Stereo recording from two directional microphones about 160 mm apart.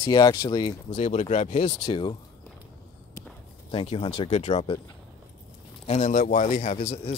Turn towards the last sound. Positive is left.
turn(degrees=45)  # may be behind; listen again after turning